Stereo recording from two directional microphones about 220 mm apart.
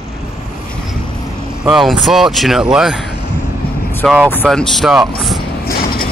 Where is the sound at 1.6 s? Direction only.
Centre (ahead or behind).